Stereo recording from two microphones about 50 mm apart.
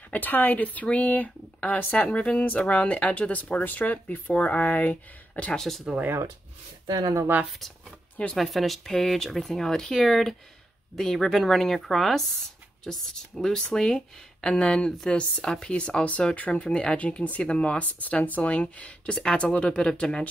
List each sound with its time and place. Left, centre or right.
0.1 s speech: left
5.6 s speech: centre
8.4 s speech: centre